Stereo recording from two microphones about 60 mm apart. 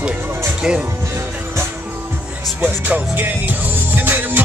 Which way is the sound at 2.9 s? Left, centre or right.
Right.